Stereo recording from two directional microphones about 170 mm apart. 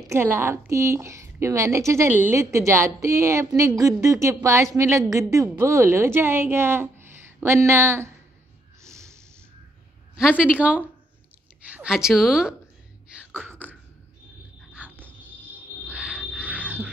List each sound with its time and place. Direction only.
0.0 s a woman's voice: 15° right (ahead or behind)
8.8 s snort: 15° right (ahead or behind)
10.1 s a woman's voice: 5° right (ahead or behind)
13.1 s beatboxing: 10° right (ahead or behind)
14.7 s a sound: 10° right (ahead or behind)